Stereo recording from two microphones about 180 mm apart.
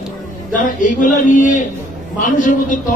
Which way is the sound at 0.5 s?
45° left (ahead or behind).